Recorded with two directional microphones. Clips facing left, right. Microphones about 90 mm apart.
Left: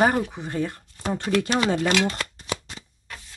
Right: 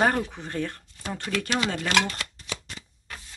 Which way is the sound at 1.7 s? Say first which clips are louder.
Left 4 dB; 25° left (ahead or behind).